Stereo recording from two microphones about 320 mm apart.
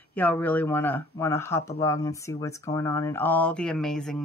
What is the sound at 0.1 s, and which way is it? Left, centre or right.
Speech, centre.